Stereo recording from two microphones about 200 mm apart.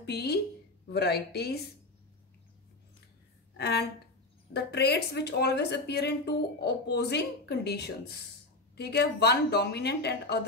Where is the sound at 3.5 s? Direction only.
55° left (ahead or behind).